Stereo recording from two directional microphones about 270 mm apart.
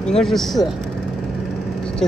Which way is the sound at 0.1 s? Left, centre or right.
Centre.